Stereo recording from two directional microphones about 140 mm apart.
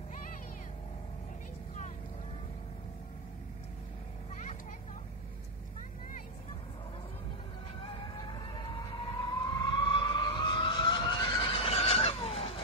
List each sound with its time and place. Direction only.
7.8 s vehicle: 35° left (ahead or behind)